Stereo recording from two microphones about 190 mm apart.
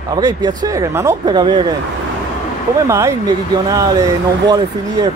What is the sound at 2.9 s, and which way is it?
Speech, 15° right (ahead or behind).